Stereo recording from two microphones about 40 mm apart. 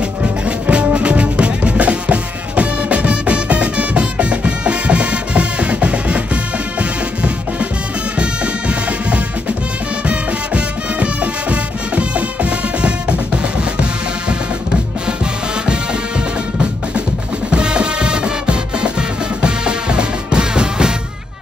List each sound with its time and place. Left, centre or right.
0.2 s music: right
8.2 s music: right
17.5 s music: right